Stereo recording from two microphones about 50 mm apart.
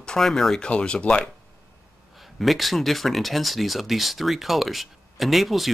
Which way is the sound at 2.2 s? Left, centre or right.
Centre.